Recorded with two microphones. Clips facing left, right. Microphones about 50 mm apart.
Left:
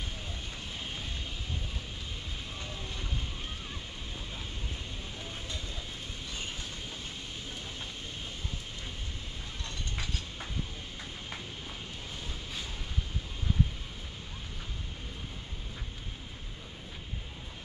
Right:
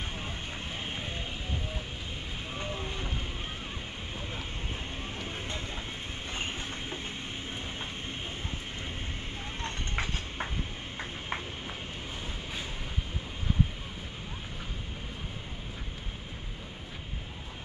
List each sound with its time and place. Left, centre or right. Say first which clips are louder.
2.6 s vehicle: right 7 dB; right
6.3 s train: right 5 dB; right
9.6 s clip-clop: right 6 dB; right
11.0 s a sound: right 8 dB; right